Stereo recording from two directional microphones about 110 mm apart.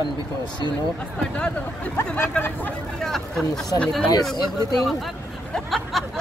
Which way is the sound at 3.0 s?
5° left (ahead or behind).